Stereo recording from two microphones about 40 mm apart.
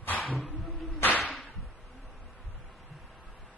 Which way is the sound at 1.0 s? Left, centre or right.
Left.